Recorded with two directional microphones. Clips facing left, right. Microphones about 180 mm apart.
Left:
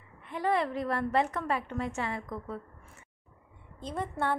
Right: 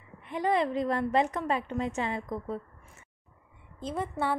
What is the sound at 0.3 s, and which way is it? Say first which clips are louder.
A woman's voice: right 2 dB; 20° right (ahead or behind).